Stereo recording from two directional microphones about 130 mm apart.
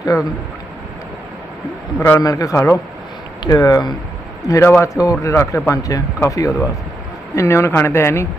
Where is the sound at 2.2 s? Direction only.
25° left (ahead or behind).